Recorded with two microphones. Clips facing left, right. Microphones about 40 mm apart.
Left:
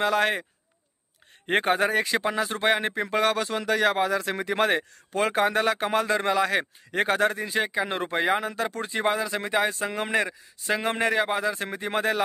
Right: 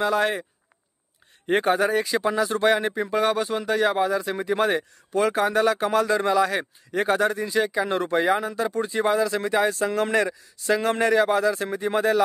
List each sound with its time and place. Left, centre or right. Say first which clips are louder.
0.0 s speech: right 1 dB; left